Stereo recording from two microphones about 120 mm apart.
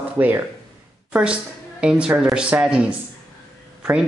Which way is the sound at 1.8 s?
10° right (ahead or behind).